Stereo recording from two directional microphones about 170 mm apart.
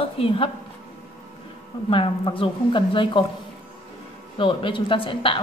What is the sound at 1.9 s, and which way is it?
Speech, 30° left (ahead or behind).